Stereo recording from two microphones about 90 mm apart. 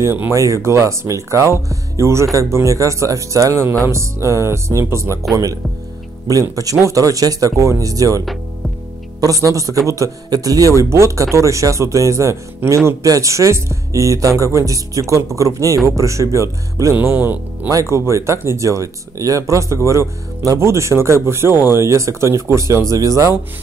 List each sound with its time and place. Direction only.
0.0 s speech: 30° right (ahead or behind)
9.2 s speech: 40° right (ahead or behind)
16.9 s speech: 25° right (ahead or behind)
17.6 s speech: 35° right (ahead or behind)